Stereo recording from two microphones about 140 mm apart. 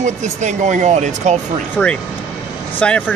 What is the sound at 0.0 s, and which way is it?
Speech, 60° right (ahead or behind).